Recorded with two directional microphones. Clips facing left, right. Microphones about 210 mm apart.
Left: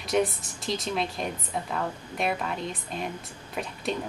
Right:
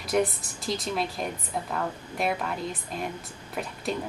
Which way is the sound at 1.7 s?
Centre (ahead or behind).